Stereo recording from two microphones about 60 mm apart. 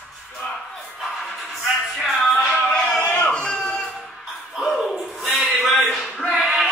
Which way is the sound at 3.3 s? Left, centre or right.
Centre.